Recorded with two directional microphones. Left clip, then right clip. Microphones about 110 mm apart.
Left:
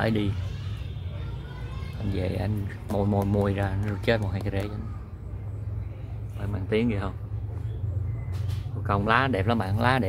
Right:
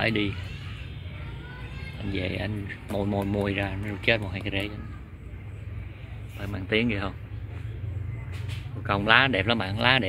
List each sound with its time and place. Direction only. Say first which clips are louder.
0.0 s speech: right 1 dB; 15° left (ahead or behind)
2.1 s speech: even; 5° left (ahead or behind)
6.4 s speech: right 1 dB; 20° right (ahead or behind)
8.8 s speech: right 3 dB; 15° right (ahead or behind); by 10.0 s centre (ahead or behind)